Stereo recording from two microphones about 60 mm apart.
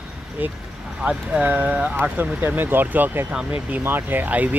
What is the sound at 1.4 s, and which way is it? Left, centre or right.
Speech, right.